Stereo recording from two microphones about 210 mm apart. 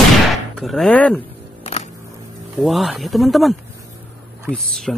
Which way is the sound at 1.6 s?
30° left (ahead or behind).